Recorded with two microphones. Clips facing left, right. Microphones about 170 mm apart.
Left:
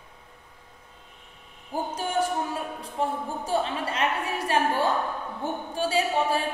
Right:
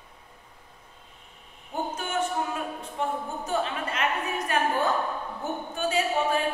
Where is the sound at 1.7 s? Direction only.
30° left (ahead or behind).